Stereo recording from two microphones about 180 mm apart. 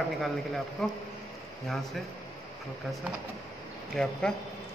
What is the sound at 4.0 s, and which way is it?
Speech, 5° left (ahead or behind).